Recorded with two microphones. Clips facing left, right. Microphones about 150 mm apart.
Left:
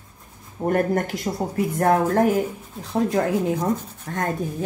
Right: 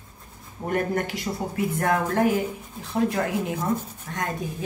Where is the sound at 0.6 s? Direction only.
45° left (ahead or behind).